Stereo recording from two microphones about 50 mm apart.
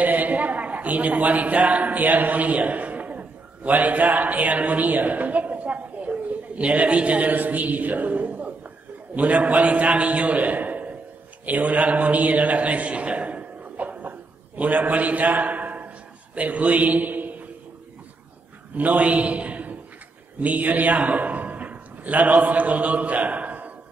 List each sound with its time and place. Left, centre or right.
0.0 s a woman's voice: right
18.8 s a man's voice: right